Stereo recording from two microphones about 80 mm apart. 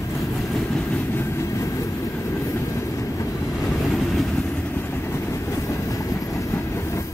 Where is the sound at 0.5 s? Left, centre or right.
Centre.